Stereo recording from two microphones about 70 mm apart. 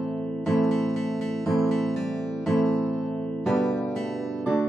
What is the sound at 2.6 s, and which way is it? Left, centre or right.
Music, centre.